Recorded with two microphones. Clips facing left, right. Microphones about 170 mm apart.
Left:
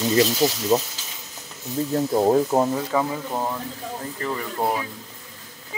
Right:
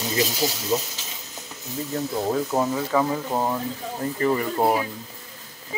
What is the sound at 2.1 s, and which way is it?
Speech, 40° left (ahead or behind).